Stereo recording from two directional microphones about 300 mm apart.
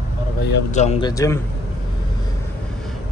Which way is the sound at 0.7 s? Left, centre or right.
Left.